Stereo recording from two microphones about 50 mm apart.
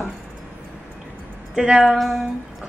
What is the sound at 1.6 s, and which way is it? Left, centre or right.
Speech, centre.